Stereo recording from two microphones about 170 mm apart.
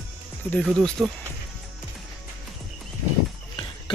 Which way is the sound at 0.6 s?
Centre (ahead or behind).